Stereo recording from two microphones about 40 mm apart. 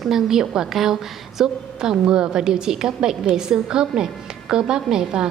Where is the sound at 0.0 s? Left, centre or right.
Centre.